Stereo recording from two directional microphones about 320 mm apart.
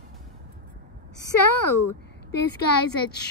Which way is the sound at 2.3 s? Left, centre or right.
Left.